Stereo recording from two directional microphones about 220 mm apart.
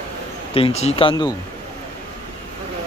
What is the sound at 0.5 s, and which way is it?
Speech, 25° left (ahead or behind).